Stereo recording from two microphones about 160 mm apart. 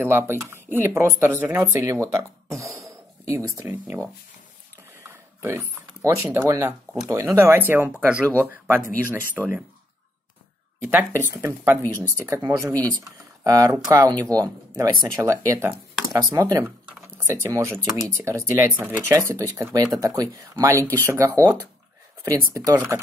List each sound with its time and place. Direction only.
0.0 s speech: 15° right (ahead or behind)
5.0 s a sound: 15° right (ahead or behind)
7.1 s speech: 15° right (ahead or behind)
10.8 s speech: 15° right (ahead or behind)
16.8 s a sound: 15° right (ahead or behind)
17.8 s speech: 15° right (ahead or behind)
20.8 s speech: 10° left (ahead or behind)
21.1 s speech: 20° right (ahead or behind)